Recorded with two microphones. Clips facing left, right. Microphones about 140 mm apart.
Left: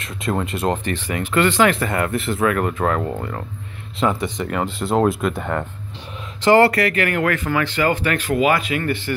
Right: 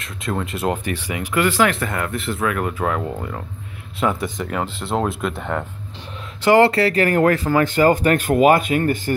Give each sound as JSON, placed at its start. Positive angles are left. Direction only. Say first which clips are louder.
{"t": 0.0, "sound": "speech", "louder": "left 2 dB", "side_deg": 0}
{"t": 6.4, "sound": "speech", "louder": "even", "side_deg": -15}
{"t": 6.7, "sound": "speech", "louder": "right 3 dB", "side_deg": -30}